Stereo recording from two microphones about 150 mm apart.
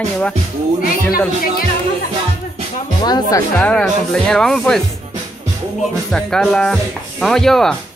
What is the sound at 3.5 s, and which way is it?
Speech, 10° left (ahead or behind).